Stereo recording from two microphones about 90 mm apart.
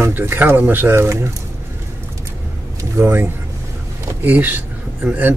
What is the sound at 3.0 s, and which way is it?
Speech, 25° right (ahead or behind).